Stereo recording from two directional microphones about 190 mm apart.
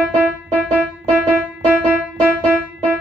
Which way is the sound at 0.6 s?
Centre (ahead or behind).